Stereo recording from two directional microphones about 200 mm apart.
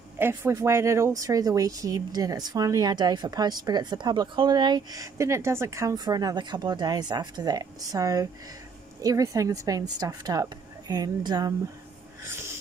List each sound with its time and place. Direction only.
0.2 s a woman's voice: 15° right (ahead or behind)